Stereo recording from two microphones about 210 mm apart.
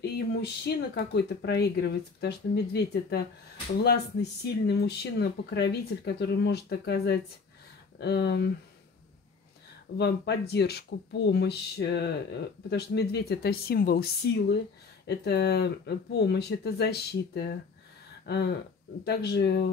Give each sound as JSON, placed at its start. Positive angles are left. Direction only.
{"t": 0.0, "sound": "speech", "side_deg": 50}
{"t": 9.9, "sound": "speech", "side_deg": 55}
{"t": 18.2, "sound": "a sound", "side_deg": 50}
{"t": 19.0, "sound": "speech", "side_deg": 50}